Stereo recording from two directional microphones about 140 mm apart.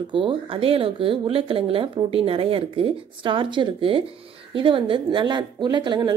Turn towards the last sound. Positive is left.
turn(degrees=-35)  # may be behind; listen again after turning